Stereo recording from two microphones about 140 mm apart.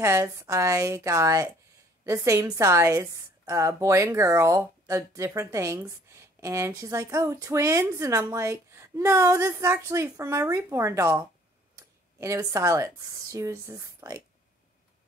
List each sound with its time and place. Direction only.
0.0 s a woman's voice: 20° right (ahead or behind)